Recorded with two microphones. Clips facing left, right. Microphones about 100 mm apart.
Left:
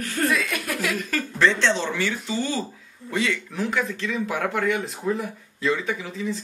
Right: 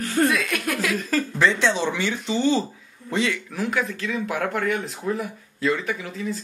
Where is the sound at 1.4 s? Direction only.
15° right (ahead or behind).